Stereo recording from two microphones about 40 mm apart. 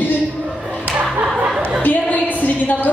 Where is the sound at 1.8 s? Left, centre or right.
Left.